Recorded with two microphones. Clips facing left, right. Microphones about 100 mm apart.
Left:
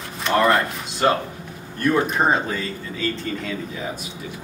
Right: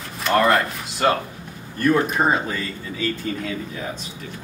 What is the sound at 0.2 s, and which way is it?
Speech, centre (ahead or behind).